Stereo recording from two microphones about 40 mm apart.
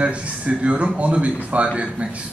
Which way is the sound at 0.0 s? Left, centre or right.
Right.